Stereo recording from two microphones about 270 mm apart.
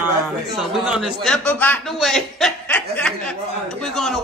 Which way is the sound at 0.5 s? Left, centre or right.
Centre.